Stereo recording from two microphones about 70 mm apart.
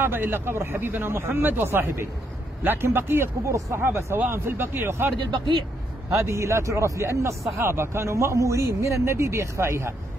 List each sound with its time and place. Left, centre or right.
0.0 s speech: right
6.1 s speech: right